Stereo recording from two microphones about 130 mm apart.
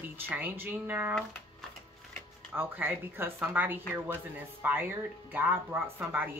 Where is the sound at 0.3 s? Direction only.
15° right (ahead or behind).